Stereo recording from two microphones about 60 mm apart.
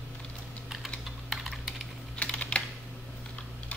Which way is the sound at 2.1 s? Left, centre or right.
Centre.